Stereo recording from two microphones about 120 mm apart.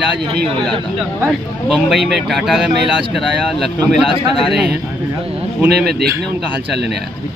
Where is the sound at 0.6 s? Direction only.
5° left (ahead or behind).